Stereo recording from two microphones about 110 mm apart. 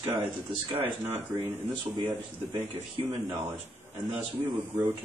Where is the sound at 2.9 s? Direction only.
55° right (ahead or behind).